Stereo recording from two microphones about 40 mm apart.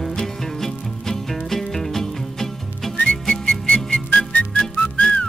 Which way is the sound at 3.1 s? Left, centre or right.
Left.